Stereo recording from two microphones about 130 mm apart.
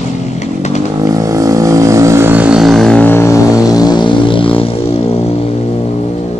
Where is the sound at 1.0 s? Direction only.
25° right (ahead or behind).